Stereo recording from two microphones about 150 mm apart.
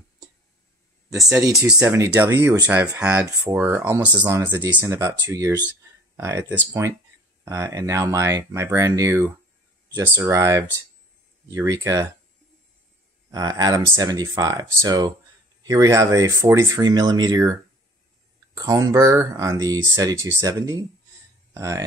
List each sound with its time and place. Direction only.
1.4 s speech: 20° right (ahead or behind)
13.3 s speech: 25° right (ahead or behind)